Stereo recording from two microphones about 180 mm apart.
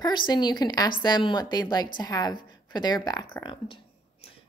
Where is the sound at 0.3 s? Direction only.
25° left (ahead or behind).